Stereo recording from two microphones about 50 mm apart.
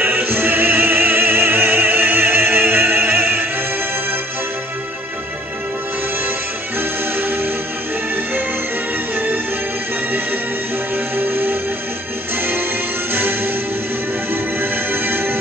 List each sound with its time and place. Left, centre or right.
0.0 s opera: right
11.1 s music: right
14.3 s music: right